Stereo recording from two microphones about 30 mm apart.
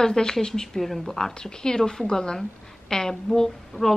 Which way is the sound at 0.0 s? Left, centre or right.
Left.